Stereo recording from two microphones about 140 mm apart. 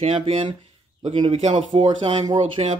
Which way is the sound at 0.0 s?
40° right (ahead or behind).